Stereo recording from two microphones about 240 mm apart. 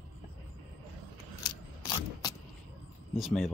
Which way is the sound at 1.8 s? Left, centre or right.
Centre.